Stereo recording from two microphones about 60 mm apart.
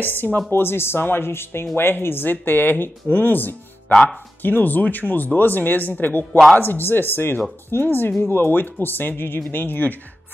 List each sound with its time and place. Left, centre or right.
0.0 s speech: left